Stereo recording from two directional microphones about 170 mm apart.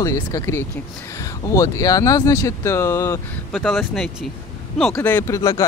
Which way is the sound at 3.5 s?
Centre (ahead or behind).